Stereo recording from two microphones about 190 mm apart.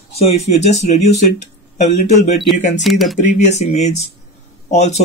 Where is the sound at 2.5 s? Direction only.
40° left (ahead or behind).